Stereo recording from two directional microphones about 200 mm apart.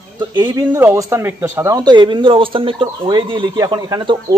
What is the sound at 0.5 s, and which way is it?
Speech, 15° right (ahead or behind).